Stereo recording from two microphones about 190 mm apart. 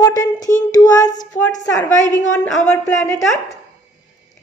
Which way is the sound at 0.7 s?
20° left (ahead or behind).